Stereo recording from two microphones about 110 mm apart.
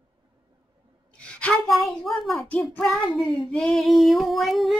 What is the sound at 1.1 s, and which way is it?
Speech, 10° left (ahead or behind).